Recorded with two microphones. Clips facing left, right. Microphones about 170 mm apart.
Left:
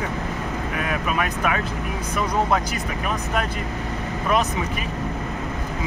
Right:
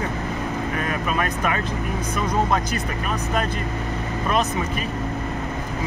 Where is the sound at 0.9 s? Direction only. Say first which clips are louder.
Left 2 dB; 10° left (ahead or behind).